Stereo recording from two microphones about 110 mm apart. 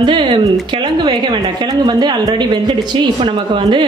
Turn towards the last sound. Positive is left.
turn(degrees=-50)  # may be behind; listen again after turning